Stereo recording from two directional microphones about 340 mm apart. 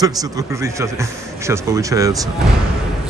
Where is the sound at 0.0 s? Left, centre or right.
Centre.